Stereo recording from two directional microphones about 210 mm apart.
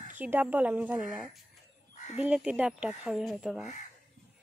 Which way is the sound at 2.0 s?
35° left (ahead or behind).